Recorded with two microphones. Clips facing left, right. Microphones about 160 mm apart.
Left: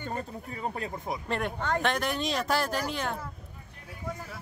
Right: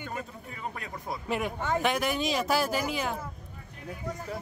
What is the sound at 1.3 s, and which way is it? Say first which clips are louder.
Speech: right 1 dB; 5° right (ahead or behind).